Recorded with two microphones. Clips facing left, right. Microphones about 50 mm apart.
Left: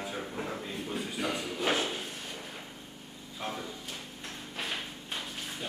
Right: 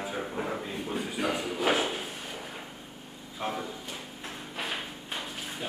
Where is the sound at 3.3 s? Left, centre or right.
Centre.